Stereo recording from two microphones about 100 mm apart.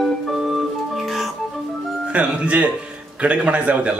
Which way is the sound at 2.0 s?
10° right (ahead or behind).